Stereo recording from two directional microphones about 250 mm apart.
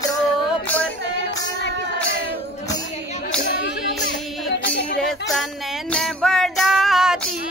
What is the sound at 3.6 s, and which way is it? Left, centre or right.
Music, left.